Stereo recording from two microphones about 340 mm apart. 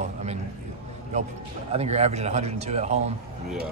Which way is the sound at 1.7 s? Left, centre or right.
Centre.